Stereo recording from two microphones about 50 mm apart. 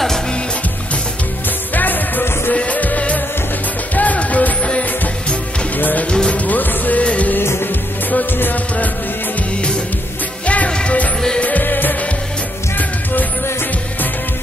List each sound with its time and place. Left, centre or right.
1.7 s music: left
5.8 s music: left
6.0 s music: centre
6.3 s music: left
8.1 s music: left
10.4 s music: left